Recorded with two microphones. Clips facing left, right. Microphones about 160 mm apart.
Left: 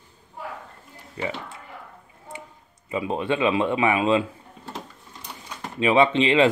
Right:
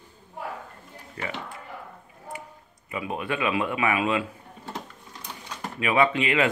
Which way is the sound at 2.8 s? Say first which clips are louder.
Left 5 dB; 25° left (ahead or behind).